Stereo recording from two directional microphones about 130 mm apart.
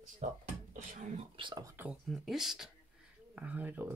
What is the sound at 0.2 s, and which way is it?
Speech, 65° right (ahead or behind).